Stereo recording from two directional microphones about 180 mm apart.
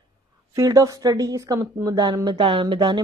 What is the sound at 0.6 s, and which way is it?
Speech, 20° right (ahead or behind).